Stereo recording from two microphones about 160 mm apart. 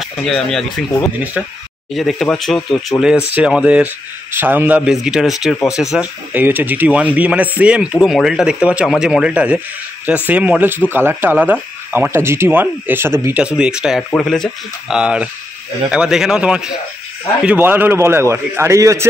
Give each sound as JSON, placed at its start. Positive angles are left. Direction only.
{"t": 0.0, "sound": "speech", "side_deg": 5}